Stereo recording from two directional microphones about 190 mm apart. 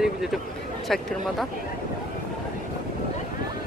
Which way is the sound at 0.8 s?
Centre (ahead or behind).